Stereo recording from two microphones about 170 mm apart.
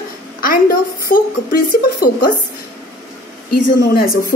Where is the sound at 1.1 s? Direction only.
60° left (ahead or behind).